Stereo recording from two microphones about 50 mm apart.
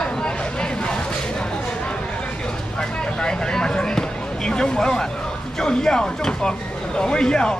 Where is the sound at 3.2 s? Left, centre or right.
Centre.